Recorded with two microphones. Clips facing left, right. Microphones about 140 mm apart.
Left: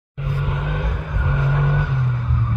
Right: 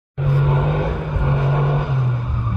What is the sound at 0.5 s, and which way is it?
Vehicle, 40° right (ahead or behind).